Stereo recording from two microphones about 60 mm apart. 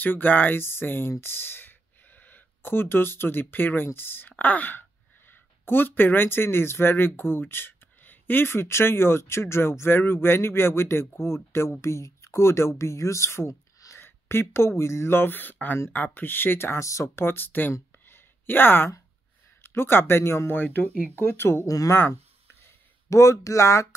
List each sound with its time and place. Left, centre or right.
0.0 s speech: left
16.7 s speech: left
18.0 s a sound: left
19.6 s speech: left
20.5 s speech: left
21.6 s speech: left
21.9 s a sound: left
23.0 s speech: left